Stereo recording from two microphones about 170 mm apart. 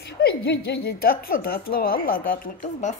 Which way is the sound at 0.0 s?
75° left (ahead or behind).